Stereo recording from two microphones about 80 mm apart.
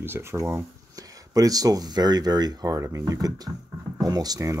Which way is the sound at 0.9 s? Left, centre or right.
Right.